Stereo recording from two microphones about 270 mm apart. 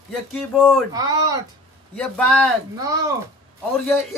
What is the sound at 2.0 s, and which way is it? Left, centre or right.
Speech, centre.